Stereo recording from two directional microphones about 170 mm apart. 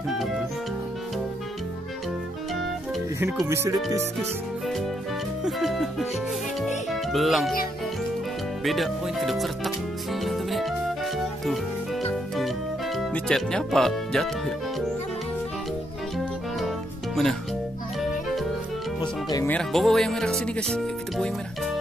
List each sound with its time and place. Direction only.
3.4 s speech: 15° right (ahead or behind)
5.4 s music: centre (ahead or behind)
8.6 s speech: centre (ahead or behind)
10.2 s music: centre (ahead or behind)
16.5 s music: centre (ahead or behind)
18.9 s music: 25° left (ahead or behind)
19.4 s speech: 5° left (ahead or behind)